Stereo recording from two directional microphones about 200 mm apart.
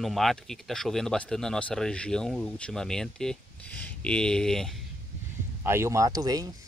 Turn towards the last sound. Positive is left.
turn(degrees=-20)  # may be behind; listen again after turning